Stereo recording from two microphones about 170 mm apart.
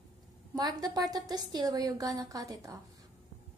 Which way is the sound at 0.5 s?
25° right (ahead or behind).